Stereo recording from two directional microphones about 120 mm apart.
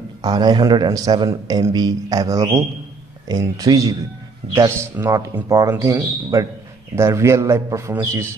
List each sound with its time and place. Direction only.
0.2 s a man's voice: 35° right (ahead or behind)
7.0 s a man's voice: 25° right (ahead or behind)